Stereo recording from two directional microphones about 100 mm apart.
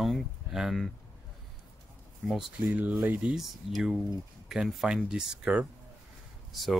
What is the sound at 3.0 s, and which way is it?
Speech, 15° right (ahead or behind).